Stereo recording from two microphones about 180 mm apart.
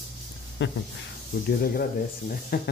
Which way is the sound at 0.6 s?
90° left.